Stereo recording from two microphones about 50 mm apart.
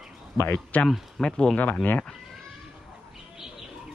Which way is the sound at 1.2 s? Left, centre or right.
Centre.